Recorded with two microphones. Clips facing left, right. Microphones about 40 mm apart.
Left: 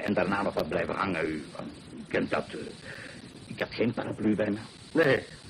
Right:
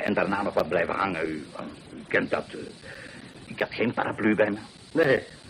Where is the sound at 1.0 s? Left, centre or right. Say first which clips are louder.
Right 1 dB; centre.